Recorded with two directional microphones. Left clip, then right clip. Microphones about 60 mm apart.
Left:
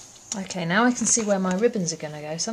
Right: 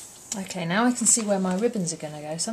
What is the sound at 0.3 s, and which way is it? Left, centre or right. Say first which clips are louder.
Speech: left 3 dB; left.